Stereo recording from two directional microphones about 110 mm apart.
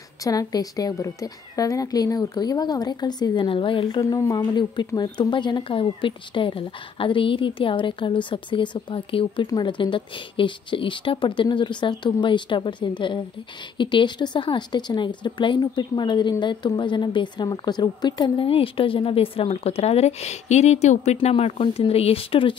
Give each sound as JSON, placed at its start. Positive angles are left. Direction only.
{"t": 0.2, "sound": "a woman's voice", "side_deg": 35}
{"t": 9.5, "sound": "speech", "side_deg": 45}
{"t": 18.4, "sound": "speech", "side_deg": 55}